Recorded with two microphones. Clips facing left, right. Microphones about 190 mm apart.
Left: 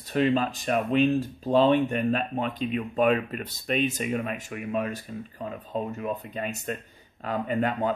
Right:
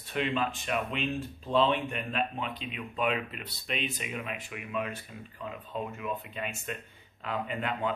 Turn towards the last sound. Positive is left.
turn(degrees=40)  # may be behind; listen again after turning